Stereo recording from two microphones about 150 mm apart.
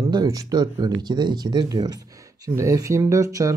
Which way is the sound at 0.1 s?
25° right (ahead or behind).